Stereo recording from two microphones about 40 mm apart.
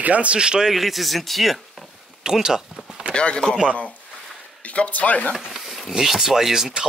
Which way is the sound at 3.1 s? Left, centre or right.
Left.